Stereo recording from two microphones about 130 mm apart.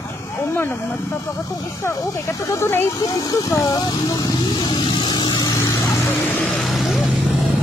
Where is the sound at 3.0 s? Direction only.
30° left (ahead or behind).